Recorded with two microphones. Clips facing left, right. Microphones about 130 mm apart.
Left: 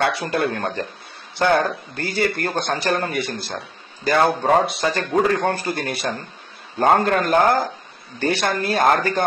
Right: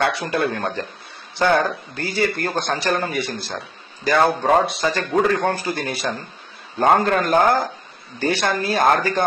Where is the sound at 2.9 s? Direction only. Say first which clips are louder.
Even; centre (ahead or behind).